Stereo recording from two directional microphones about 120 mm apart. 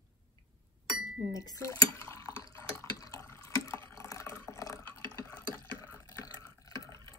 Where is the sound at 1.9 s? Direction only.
25° left (ahead or behind).